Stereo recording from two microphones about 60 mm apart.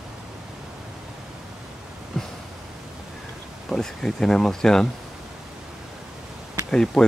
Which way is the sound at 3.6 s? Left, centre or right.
Centre.